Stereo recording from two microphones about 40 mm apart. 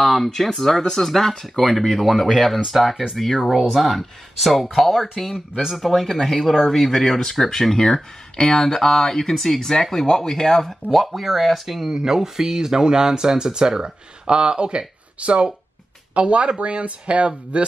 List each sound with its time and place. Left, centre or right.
0.0 s speech: centre
5.5 s speech: centre
5.8 s speech: centre; by 17.7 s right